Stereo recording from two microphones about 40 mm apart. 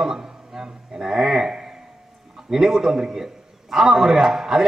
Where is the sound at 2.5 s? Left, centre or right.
Centre.